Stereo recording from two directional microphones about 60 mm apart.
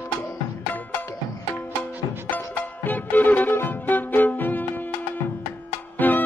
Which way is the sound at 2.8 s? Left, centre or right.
Left.